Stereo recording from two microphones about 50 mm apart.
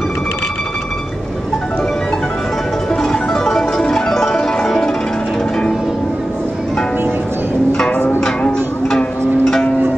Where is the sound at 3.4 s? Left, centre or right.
Centre.